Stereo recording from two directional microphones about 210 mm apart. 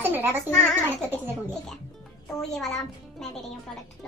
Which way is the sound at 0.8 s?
10° right (ahead or behind).